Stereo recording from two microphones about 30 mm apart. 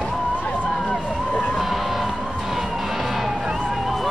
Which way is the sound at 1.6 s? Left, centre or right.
Centre.